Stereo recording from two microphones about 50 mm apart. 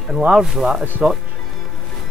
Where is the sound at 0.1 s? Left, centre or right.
Centre.